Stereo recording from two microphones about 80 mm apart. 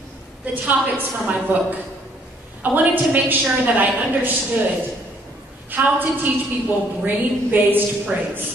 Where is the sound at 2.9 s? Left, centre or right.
Right.